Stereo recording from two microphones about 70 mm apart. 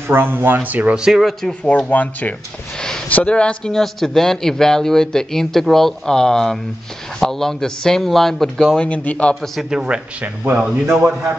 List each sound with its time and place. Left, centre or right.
0.1 s speech: right
0.9 s speech: centre
1.6 s a man's voice: centre
8.8 s speech: centre
9.3 s speech: centre
9.7 s speech: centre
10.4 s speech: right